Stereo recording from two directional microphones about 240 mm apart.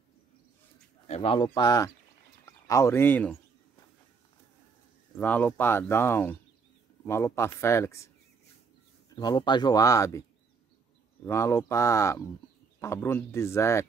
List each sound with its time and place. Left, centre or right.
1.0 s speech: left; by 3.3 s centre
5.2 s speech: centre
9.1 s speech: centre
11.2 s speech: centre